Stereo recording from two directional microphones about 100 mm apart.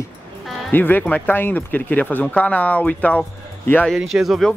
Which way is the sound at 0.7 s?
20° left (ahead or behind).